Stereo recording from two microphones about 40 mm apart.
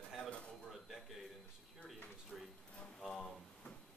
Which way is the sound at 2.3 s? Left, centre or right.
Centre.